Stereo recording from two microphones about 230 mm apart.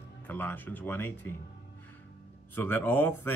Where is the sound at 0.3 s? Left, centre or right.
Centre.